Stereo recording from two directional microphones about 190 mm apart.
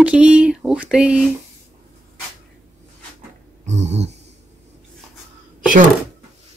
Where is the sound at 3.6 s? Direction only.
35° right (ahead or behind).